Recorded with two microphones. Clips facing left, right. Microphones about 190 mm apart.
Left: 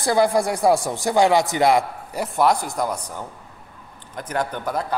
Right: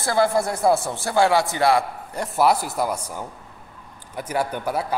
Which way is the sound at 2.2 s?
Centre (ahead or behind).